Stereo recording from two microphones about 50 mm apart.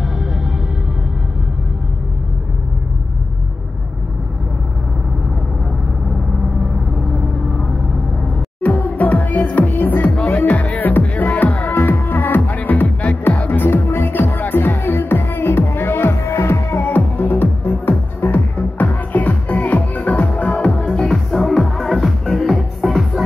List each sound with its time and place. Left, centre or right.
8.6 s music: left
10.1 s music: left
13.6 s music: left
21.1 s music: centre